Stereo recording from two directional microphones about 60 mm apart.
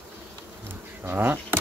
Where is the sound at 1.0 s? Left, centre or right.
Right.